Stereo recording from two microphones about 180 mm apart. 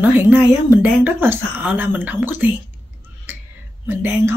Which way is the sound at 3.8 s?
15° right (ahead or behind).